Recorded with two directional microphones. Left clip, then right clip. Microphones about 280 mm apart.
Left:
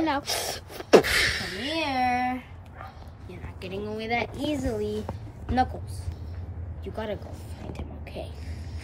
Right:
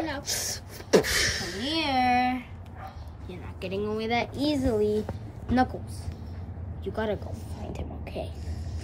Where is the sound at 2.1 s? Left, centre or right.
Centre.